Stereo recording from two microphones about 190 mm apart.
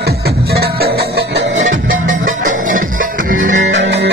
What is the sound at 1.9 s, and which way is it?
Music, 40° right (ahead or behind).